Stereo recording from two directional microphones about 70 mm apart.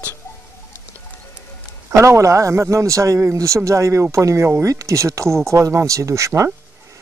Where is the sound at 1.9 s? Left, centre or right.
Right.